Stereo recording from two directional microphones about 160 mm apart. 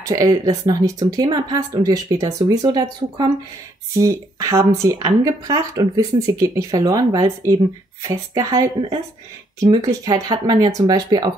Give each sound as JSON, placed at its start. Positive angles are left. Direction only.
{"t": 0.0, "sound": "a woman's voice", "side_deg": -20}